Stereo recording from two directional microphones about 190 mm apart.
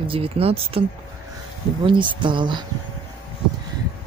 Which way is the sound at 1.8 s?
25° right (ahead or behind).